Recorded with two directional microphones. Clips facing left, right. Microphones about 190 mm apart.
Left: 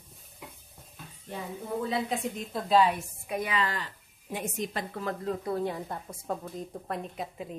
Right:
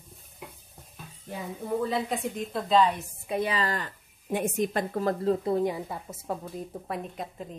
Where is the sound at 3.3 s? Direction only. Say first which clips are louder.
Right 3 dB; 30° right (ahead or behind).